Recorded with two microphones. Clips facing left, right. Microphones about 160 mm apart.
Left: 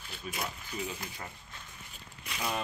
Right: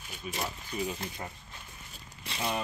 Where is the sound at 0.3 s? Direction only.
25° right (ahead or behind).